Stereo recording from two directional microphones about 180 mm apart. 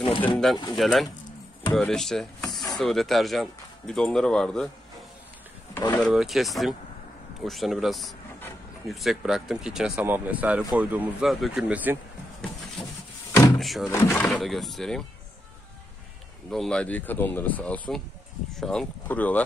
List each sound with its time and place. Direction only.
0.0 s speech: 30° left (ahead or behind)
0.7 s speech: centre (ahead or behind)
5.9 s speech: centre (ahead or behind)
13.3 s door: 15° left (ahead or behind)
13.6 s a sound: centre (ahead or behind)
13.8 s speech: 15° left (ahead or behind)
14.2 s speech: centre (ahead or behind)
16.4 s speech: 5° left (ahead or behind)